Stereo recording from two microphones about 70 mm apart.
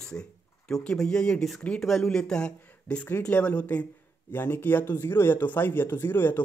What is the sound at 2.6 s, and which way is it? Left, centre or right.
Speech, left.